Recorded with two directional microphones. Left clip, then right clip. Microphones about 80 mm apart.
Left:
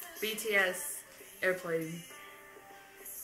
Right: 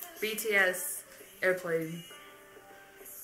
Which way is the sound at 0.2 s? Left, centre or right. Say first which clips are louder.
Right 3 dB; centre.